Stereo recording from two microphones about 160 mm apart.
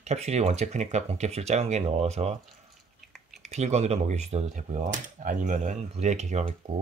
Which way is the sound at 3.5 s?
45° right (ahead or behind).